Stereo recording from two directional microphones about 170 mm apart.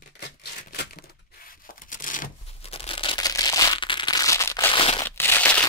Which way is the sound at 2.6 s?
35° left (ahead or behind).